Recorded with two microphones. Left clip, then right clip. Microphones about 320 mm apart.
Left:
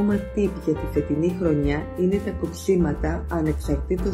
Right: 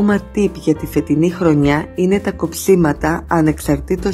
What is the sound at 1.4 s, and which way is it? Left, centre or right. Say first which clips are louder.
Speech: right 9 dB; right.